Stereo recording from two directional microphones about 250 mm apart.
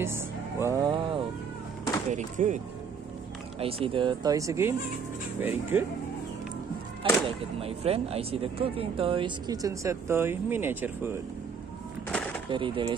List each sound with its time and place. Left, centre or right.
0.0 s speech: centre
2.0 s speech: right; by 5.9 s centre
7.0 s speech: right
12.4 s speech: centre